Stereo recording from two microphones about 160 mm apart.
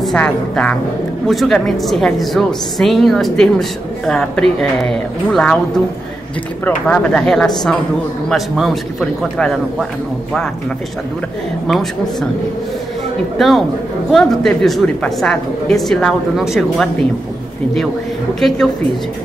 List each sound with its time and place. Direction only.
0.0 s a woman's voice: 5° left (ahead or behind)
6.6 s a woman's voice: 5° left (ahead or behind)
11.6 s a woman's voice: centre (ahead or behind)
13.4 s a woman's voice: centre (ahead or behind)